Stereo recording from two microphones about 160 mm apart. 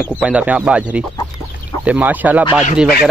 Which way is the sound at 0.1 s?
10° right (ahead or behind).